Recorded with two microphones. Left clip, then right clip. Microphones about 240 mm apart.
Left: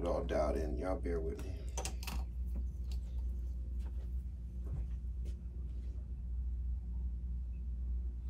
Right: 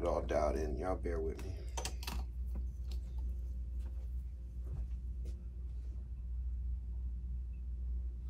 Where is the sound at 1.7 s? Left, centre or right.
Right.